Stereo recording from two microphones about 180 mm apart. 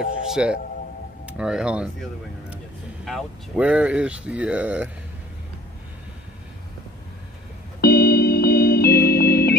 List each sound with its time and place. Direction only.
0.3 s speech: 5° right (ahead or behind)
3.1 s speech: 5° right (ahead or behind)
7.8 s music: 60° left (ahead or behind)